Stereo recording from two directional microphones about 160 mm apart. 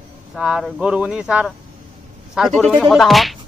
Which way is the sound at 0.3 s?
5° right (ahead or behind).